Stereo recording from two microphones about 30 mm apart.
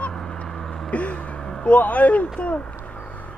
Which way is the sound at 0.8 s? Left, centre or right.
Left.